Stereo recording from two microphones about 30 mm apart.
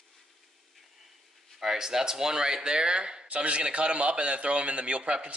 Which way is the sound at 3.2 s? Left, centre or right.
Right.